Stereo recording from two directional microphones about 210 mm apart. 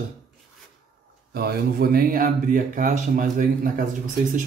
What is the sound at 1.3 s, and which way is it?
Speech, 45° right (ahead or behind).